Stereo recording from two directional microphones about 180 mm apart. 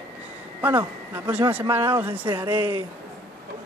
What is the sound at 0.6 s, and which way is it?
Speech, 10° right (ahead or behind).